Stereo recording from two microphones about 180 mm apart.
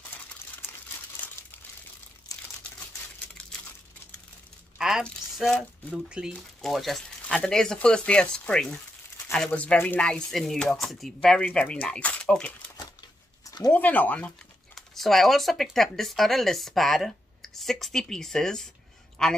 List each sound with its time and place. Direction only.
4.7 s speech: centre (ahead or behind)
13.5 s a sound: 20° left (ahead or behind)
13.7 s speech: 10° left (ahead or behind)